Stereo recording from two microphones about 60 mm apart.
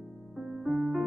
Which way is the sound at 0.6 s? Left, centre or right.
Centre.